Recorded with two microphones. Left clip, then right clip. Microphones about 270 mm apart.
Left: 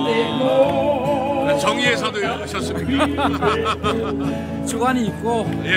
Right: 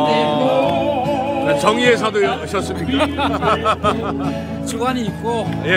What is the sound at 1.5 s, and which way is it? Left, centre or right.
A man's voice, centre.